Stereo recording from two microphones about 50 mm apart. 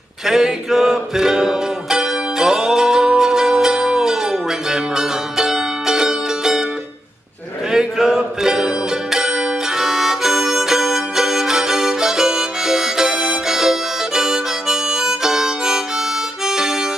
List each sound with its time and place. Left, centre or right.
0.3 s music: centre
7.7 s music: centre
16.4 s harmonica: centre